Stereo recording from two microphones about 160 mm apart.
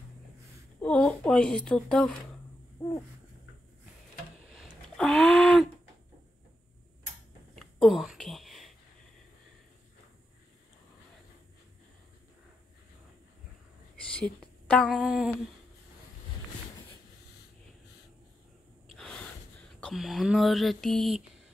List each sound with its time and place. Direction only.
0.7 s speech: 5° left (ahead or behind)
2.8 s owl: 30° left (ahead or behind)
4.5 s a sound: centre (ahead or behind)
7.5 s a sound: centre (ahead or behind)
14.0 s speech: 5° left (ahead or behind)
18.9 s gasp: 5° left (ahead or behind)
19.8 s speech: centre (ahead or behind)